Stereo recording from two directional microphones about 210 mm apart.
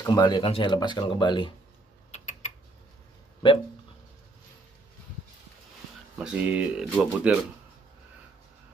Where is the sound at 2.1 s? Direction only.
35° left (ahead or behind).